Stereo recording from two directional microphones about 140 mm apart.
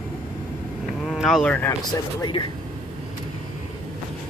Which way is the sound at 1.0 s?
Centre (ahead or behind).